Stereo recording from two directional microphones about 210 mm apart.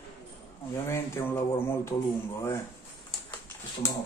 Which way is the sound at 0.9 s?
10° left (ahead or behind).